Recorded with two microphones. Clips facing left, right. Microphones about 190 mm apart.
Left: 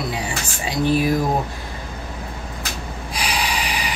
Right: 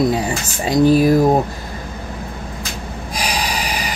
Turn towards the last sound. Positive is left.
turn(degrees=-45)  # may be behind; listen again after turning